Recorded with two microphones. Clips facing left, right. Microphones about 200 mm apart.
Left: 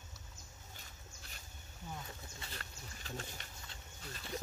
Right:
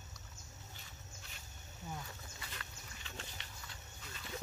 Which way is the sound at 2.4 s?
40° left (ahead or behind).